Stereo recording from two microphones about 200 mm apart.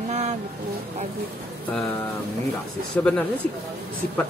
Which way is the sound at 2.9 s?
5° left (ahead or behind).